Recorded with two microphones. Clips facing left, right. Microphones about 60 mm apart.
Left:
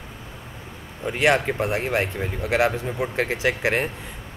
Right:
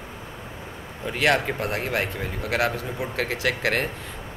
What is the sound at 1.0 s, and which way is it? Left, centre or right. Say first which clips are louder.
A man's voice: left 2 dB; left.